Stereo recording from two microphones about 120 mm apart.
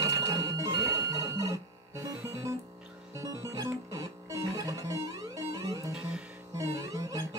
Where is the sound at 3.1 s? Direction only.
25° right (ahead or behind).